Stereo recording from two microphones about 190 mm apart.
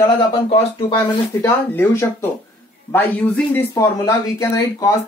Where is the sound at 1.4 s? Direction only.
15° left (ahead or behind).